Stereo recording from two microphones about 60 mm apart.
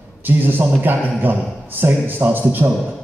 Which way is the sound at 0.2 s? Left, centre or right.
Right.